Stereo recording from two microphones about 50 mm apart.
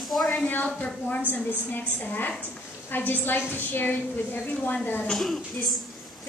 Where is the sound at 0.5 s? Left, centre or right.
Left.